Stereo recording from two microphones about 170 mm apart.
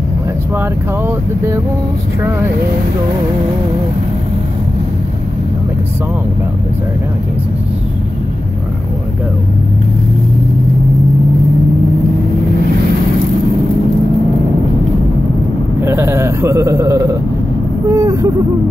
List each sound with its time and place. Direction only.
0.6 s speech: 15° right (ahead or behind)
15.8 s a man's voice: 15° right (ahead or behind)
17.8 s a sound: 20° right (ahead or behind)